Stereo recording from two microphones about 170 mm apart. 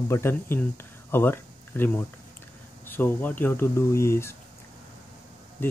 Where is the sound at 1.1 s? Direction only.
15° left (ahead or behind).